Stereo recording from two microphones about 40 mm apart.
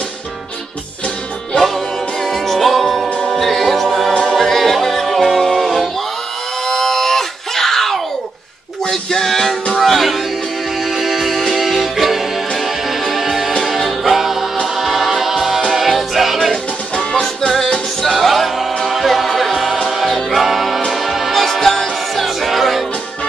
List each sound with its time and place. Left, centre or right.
2.2 s music: centre
6.7 s screaming: centre
8.8 s music: centre
17.1 s music: centre
18.0 s music: centre